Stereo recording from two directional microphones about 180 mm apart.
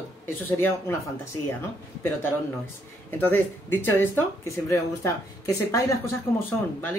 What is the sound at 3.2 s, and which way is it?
Speech, 10° left (ahead or behind).